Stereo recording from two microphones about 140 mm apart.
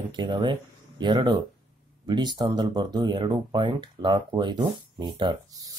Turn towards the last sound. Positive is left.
turn(degrees=-30)  # may be behind; listen again after turning